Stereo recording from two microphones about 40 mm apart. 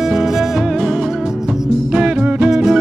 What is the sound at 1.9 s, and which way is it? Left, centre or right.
Music, right.